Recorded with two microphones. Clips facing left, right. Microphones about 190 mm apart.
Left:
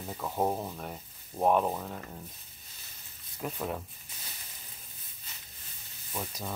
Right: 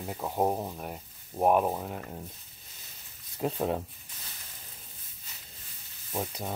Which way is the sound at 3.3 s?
30° right (ahead or behind).